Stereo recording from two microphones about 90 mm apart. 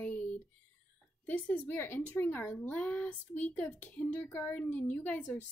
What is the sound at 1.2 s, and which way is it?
A woman's voice, 20° left (ahead or behind).